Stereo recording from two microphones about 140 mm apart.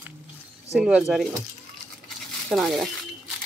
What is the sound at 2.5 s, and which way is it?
Speech, centre (ahead or behind).